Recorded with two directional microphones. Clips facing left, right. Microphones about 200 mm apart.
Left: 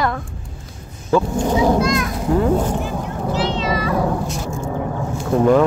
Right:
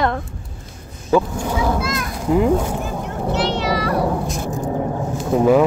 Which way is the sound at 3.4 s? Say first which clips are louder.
Even; 70° right (ahead or behind).